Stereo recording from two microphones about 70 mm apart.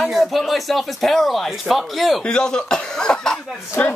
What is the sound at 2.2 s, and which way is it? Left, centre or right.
Speech, centre.